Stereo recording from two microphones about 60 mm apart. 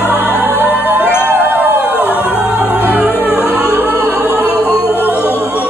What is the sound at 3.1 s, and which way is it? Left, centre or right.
Music, left.